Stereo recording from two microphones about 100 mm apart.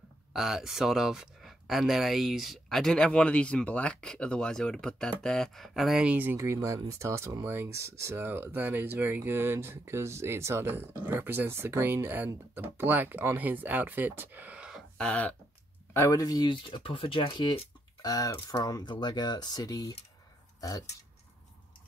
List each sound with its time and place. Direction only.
0.3 s speech: 5° right (ahead or behind)
6.1 s speech: 25° right (ahead or behind)
15.0 s a sound: 15° left (ahead or behind)
15.9 s speech: 30° left (ahead or behind); by 17.6 s 55° left (ahead or behind)
18.0 s speech: 35° left (ahead or behind)